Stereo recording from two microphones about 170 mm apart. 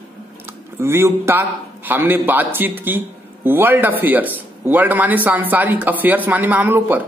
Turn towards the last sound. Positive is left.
turn(degrees=-10)  # may be behind; listen again after turning